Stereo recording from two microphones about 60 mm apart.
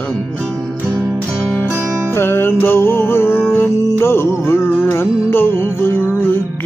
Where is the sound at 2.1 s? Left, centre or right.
Left.